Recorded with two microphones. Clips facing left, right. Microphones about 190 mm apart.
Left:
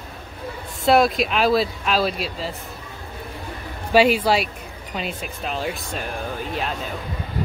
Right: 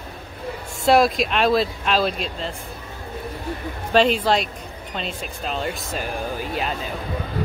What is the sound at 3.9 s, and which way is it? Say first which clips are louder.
Speech: left 1 dB; 10° left (ahead or behind).